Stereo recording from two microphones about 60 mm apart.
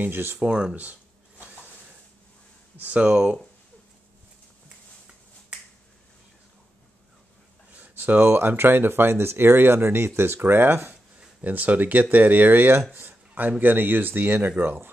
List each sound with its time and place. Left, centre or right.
0.0 s speech: right
0.4 s speech: centre
1.4 s a sound: right
2.8 s speech: right
7.7 s speech: right